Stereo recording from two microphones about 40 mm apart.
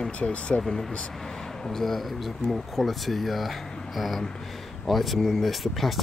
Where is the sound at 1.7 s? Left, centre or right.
Centre.